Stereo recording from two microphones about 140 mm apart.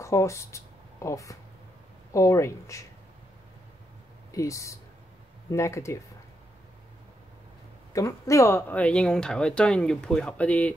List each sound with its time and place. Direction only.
0.0 s speech: 20° left (ahead or behind)
4.3 s speech: 25° left (ahead or behind)
7.9 s speech: 25° left (ahead or behind)